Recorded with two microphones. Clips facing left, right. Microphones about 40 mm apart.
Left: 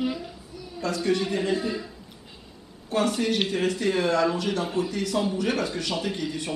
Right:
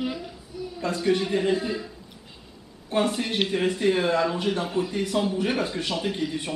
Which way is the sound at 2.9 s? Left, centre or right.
Centre.